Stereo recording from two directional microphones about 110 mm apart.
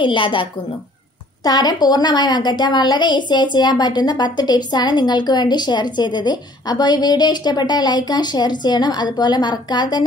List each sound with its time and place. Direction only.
0.0 s a woman's voice: 45° left (ahead or behind)
1.4 s a woman's voice: 40° left (ahead or behind)